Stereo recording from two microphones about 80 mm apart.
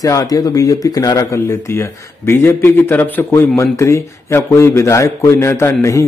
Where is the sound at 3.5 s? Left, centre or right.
Left.